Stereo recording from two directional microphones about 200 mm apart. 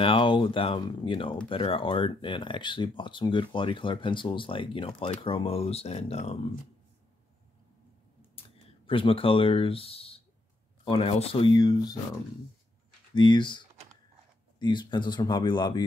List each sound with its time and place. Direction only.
0.0 s speech: 25° left (ahead or behind)
8.4 s speech: 25° left (ahead or behind)
13.1 s speech: 20° left (ahead or behind)